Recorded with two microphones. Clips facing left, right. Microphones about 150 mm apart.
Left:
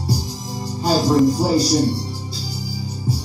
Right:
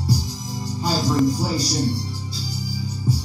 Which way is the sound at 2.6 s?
35° left (ahead or behind).